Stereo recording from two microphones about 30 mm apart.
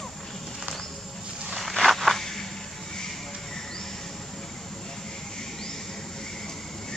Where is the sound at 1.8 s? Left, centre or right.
Centre.